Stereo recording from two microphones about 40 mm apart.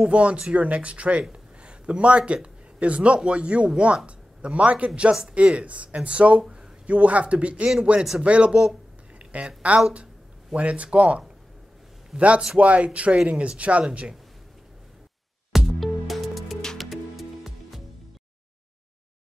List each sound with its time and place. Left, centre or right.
0.0 s speech: right
1.6 s a sound: right
3.3 s a man's voice: right
9.3 s speech: right
10.5 s speech: right
15.5 s music: centre